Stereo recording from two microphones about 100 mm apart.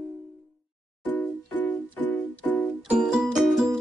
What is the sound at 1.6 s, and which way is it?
Music, 15° left (ahead or behind).